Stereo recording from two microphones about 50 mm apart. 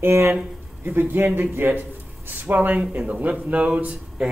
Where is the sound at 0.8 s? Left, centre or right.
Right; by 4.3 s centre.